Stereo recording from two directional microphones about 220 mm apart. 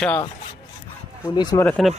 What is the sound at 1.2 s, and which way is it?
Speech, 20° left (ahead or behind).